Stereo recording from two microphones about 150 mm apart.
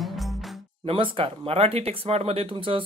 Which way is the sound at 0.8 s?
40° right (ahead or behind).